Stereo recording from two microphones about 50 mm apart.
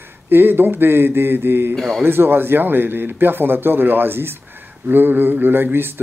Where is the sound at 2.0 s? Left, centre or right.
Right.